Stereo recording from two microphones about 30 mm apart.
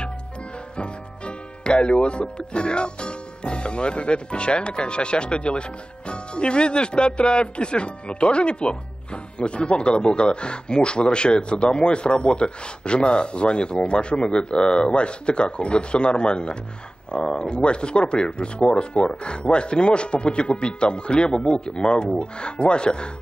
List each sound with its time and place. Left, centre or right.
0.7 s speech: left